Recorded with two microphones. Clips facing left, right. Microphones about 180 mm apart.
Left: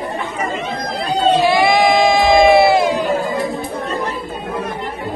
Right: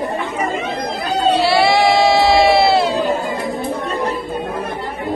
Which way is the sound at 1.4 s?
15° left (ahead or behind).